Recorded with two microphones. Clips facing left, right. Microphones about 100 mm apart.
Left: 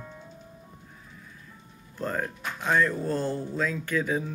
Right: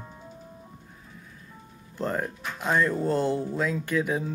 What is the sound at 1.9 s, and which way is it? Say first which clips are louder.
Speech: right 2 dB; 20° right (ahead or behind).